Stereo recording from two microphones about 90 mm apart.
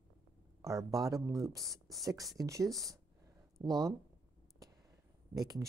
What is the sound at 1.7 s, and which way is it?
Speech, centre (ahead or behind).